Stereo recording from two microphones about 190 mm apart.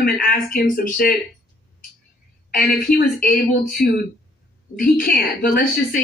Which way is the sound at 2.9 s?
55° left (ahead or behind).